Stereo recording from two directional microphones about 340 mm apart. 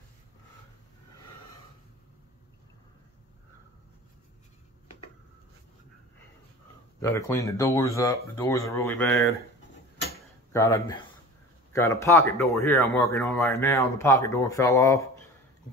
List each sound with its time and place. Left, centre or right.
7.0 s speech: centre
10.5 s speech: centre